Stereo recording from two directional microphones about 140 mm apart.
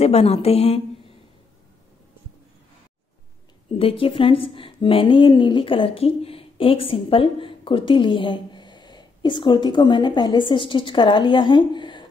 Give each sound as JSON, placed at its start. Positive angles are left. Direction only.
{"t": 0.0, "sound": "a woman's voice", "side_deg": 45}
{"t": 3.7, "sound": "a woman's voice", "side_deg": 40}